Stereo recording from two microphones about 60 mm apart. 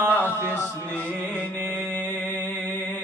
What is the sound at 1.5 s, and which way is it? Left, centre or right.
Music, right.